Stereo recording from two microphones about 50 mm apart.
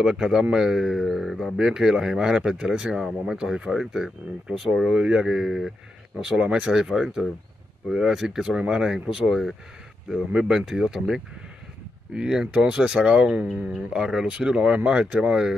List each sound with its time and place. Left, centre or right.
0.0 s speech: centre